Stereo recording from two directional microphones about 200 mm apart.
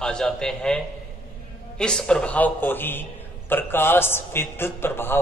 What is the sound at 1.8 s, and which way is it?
A man's voice, 5° left (ahead or behind).